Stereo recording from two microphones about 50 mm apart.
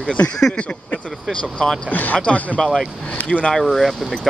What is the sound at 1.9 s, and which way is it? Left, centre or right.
Speech, left.